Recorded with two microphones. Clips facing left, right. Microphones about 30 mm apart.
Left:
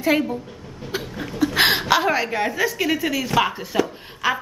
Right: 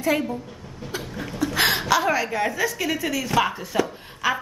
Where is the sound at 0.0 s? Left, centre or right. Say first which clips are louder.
Left 3 dB; centre.